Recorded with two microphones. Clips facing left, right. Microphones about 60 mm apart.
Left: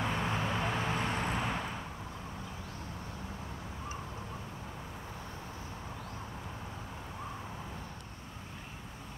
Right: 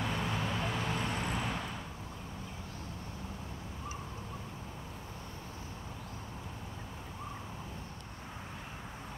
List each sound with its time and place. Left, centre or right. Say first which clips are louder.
0.0 s vehicle: left 2 dB; left